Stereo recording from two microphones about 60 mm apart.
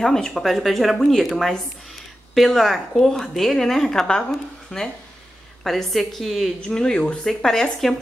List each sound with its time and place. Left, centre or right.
0.0 s a woman's voice: centre
6.6 s a woman's voice: centre